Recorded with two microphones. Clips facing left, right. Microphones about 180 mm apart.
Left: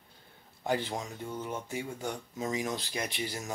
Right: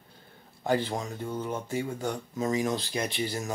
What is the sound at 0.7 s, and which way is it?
Speech, 35° right (ahead or behind).